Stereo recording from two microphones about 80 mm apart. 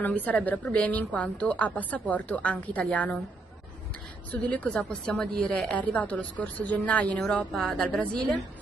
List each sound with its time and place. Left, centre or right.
0.0 s a woman's voice: left
4.3 s a woman's voice: centre